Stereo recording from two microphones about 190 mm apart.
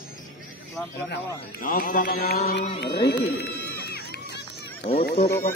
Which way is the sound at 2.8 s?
65° left (ahead or behind).